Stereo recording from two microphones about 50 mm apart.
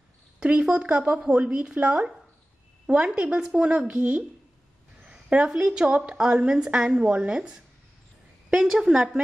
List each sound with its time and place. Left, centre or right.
0.4 s a woman's voice: right